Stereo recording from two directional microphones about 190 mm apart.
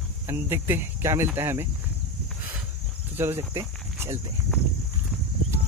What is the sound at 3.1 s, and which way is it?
Speech, 10° right (ahead or behind).